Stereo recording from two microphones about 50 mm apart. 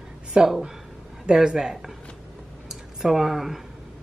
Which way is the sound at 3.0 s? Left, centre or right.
Centre.